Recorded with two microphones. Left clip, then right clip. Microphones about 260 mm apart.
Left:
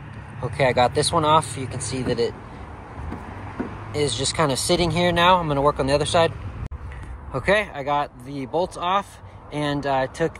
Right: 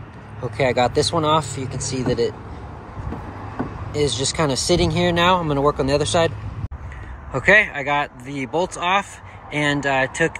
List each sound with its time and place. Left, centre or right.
0.4 s speech: centre
3.9 s speech: centre
7.3 s speech: centre
8.5 s speech: centre
8.7 s speech: centre